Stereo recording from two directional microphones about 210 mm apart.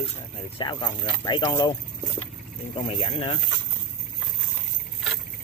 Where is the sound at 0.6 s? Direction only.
20° left (ahead or behind).